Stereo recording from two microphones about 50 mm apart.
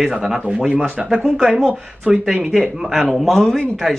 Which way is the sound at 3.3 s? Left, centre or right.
Centre.